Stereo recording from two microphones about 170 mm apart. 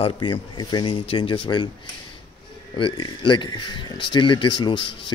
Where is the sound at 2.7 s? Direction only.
25° left (ahead or behind).